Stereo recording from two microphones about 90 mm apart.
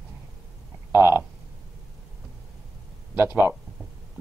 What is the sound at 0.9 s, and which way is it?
Speech, 25° right (ahead or behind).